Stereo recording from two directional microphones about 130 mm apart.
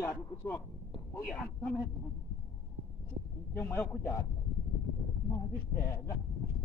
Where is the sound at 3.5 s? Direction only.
15° left (ahead or behind).